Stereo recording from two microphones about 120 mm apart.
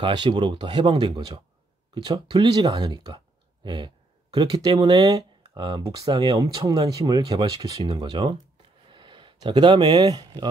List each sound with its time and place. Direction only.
0.0 s speech: 40° right (ahead or behind)